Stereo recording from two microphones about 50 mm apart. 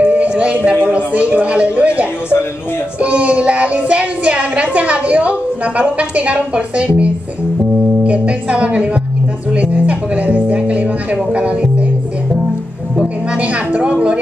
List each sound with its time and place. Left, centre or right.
0.0 s music: right
0.8 s a sound: right
3.0 s a child's voice: right
12.9 s speech: right